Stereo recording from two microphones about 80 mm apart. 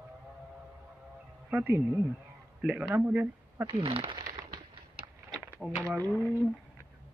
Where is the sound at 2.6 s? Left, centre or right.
Centre.